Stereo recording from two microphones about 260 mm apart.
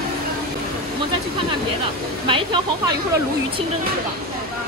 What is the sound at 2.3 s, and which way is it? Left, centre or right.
Speech, centre.